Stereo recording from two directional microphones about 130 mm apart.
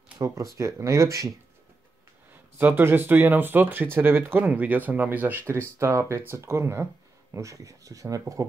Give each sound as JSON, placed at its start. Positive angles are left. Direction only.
{"t": 0.2, "sound": "speech", "side_deg": -25}
{"t": 2.6, "sound": "speech", "side_deg": -15}